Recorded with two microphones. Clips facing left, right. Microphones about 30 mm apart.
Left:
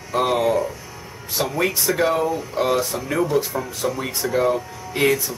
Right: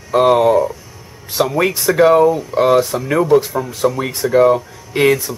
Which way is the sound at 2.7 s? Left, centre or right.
Right.